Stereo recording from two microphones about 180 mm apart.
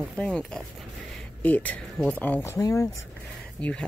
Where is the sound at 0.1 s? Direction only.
5° left (ahead or behind).